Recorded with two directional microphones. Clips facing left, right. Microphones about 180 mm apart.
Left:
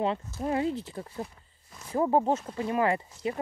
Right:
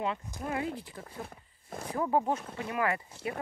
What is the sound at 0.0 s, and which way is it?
Speech, 30° left (ahead or behind).